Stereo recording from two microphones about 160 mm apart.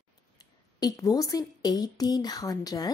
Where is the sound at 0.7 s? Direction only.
25° left (ahead or behind).